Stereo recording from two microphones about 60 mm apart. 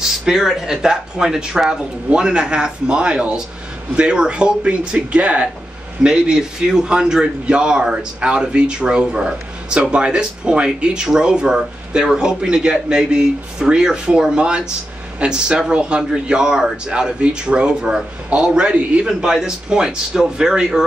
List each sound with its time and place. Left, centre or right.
0.2 s speech: centre